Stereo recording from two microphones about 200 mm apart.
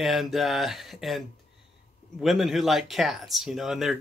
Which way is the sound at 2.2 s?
Centre (ahead or behind).